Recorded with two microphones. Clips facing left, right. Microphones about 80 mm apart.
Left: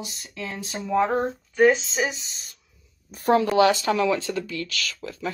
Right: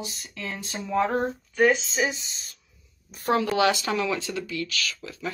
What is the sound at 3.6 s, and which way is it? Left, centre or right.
Speech, left.